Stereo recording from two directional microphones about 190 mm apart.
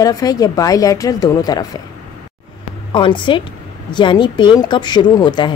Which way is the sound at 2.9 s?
25° left (ahead or behind).